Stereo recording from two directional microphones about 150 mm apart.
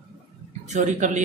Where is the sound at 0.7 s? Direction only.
55° right (ahead or behind).